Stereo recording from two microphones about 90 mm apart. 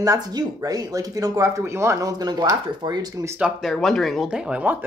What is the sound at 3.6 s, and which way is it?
Speech, 5° left (ahead or behind).